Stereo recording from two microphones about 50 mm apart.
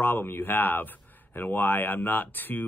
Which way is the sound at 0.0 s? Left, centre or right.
Left.